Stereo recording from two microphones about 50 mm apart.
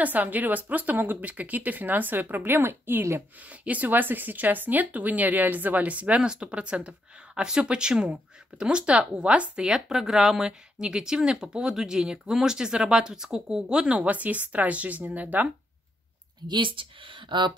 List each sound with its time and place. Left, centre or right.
0.0 s speech: right
3.4 s speech: right
9.7 s speech: centre
13.9 s speech: right